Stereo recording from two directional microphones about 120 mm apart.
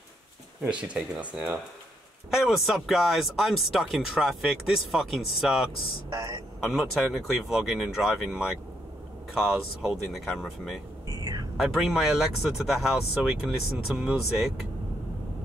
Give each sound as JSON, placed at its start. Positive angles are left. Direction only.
{"t": 0.6, "sound": "speech", "side_deg": -10}
{"t": 6.1, "sound": "a man's voice", "side_deg": -30}
{"t": 6.6, "sound": "speech", "side_deg": -5}